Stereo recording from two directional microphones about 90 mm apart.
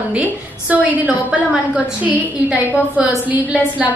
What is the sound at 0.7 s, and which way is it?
A woman's voice, 15° right (ahead or behind).